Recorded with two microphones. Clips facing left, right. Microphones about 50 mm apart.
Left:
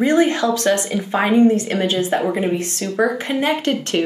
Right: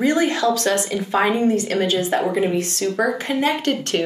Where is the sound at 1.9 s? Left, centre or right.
Centre.